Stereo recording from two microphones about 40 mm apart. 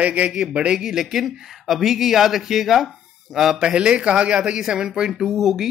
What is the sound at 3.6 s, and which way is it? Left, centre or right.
Speech, right.